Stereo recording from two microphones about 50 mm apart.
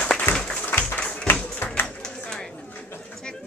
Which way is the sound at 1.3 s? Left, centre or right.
Left.